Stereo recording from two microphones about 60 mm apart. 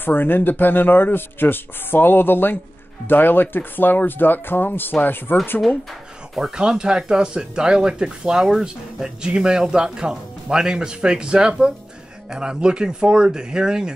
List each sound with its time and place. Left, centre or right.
0.0 s speech: left
6.3 s speech: centre